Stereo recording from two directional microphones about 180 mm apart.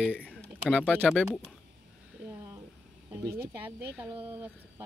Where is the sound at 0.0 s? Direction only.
5° left (ahead or behind).